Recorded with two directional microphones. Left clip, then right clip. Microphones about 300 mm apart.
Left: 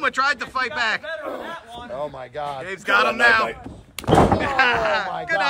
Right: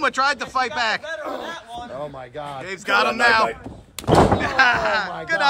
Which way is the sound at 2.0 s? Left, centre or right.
Left.